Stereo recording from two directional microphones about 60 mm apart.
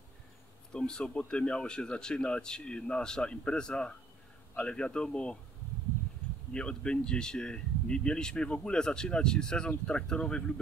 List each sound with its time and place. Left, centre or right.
0.7 s speech: centre
6.5 s speech: centre